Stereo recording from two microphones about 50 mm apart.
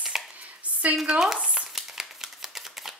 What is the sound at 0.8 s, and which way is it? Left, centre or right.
Speech, right.